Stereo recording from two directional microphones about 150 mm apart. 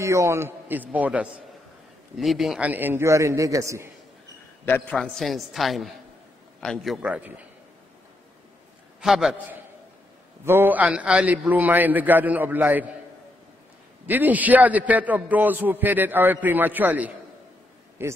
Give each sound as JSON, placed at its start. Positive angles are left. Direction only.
{"t": 0.0, "sound": "a man's voice", "side_deg": -20}
{"t": 4.6, "sound": "a man's voice", "side_deg": 15}
{"t": 4.9, "sound": "a woman's voice", "side_deg": 0}
{"t": 9.0, "sound": "a woman's voice", "side_deg": 0}
{"t": 10.4, "sound": "a man's voice", "side_deg": -15}
{"t": 14.0, "sound": "a man's voice", "side_deg": -10}